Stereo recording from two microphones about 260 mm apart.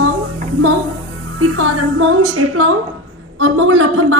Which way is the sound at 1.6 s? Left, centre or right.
Right.